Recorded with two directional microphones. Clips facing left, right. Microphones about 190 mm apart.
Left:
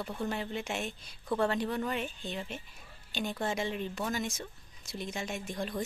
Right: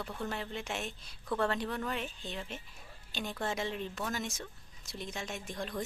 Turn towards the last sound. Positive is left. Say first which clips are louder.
# left 3 dB
turn(degrees=5)  # may be behind; listen again after turning